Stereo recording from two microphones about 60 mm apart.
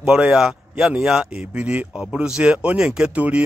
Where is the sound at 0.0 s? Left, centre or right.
Centre.